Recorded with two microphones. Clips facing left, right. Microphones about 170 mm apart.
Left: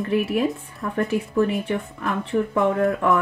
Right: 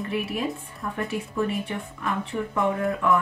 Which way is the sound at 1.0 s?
60° left (ahead or behind).